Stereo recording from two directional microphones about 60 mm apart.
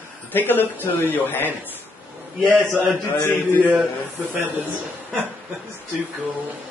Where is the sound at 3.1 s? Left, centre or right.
Left.